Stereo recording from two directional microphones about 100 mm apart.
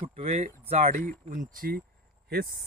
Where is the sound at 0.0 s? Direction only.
80° right.